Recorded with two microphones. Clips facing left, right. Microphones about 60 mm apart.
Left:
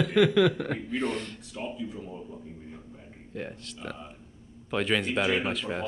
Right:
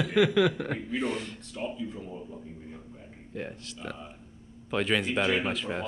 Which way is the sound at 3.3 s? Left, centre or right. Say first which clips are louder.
Even; centre.